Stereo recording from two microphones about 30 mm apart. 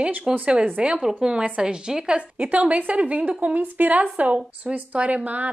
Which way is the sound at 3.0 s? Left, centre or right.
Right.